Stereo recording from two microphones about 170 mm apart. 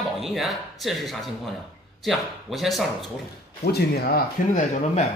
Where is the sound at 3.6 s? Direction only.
70° left (ahead or behind).